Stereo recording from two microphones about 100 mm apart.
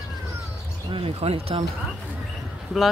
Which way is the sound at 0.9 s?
70° right (ahead or behind).